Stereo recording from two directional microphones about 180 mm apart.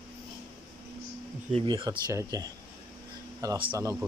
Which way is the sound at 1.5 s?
25° right (ahead or behind).